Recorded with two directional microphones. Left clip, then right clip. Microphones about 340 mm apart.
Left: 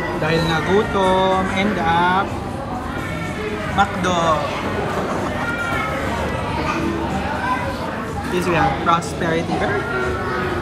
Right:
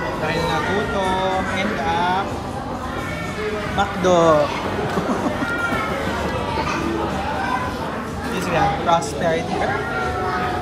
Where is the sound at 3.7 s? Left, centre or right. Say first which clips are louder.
Right 1 dB; centre.